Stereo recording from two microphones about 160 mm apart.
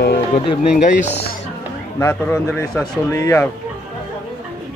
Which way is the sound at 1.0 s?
90° left.